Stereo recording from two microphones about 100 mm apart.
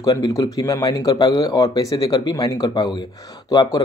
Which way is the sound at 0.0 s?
40° left (ahead or behind).